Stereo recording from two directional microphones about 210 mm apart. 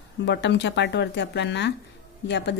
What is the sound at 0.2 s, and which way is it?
Speech, 55° left (ahead or behind).